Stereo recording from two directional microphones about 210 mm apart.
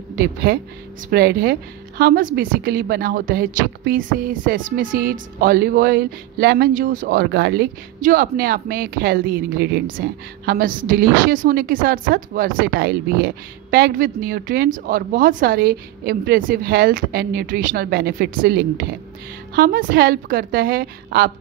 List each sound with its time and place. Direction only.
0.1 s a woman's voice: 45° right (ahead or behind)